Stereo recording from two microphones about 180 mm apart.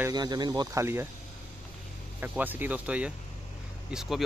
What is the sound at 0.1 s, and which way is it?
Speech, 25° right (ahead or behind).